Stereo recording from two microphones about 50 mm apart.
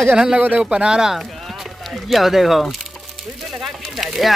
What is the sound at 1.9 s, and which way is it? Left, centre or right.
Speech, centre.